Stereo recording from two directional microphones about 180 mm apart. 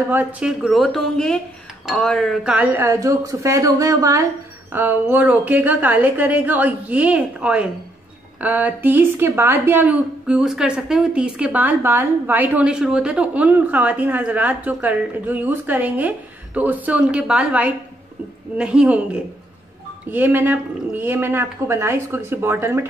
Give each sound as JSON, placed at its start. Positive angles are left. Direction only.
{"t": 0.1, "sound": "a woman's voice", "side_deg": -5}
{"t": 20.1, "sound": "a woman's voice", "side_deg": -10}